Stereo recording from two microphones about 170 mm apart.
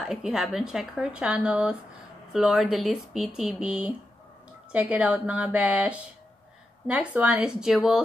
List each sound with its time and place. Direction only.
0.0 s speech: 5° right (ahead or behind)